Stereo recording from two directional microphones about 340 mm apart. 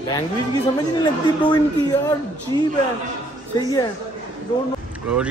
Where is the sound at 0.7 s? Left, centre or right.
Centre.